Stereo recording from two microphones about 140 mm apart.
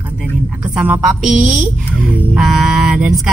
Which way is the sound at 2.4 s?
5° right (ahead or behind).